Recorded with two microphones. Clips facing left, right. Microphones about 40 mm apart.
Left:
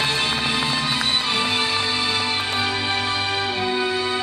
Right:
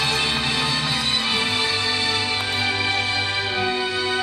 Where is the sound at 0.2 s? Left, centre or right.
Centre.